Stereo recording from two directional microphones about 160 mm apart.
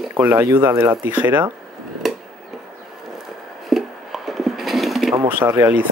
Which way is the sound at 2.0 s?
Centre (ahead or behind).